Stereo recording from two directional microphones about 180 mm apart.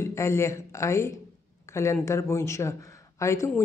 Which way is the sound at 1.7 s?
15° left (ahead or behind).